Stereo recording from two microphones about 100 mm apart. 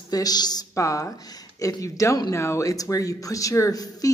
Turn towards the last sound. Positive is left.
turn(degrees=35)  # may be behind; listen again after turning